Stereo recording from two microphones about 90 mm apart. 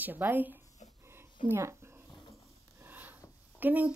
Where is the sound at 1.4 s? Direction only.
30° right (ahead or behind).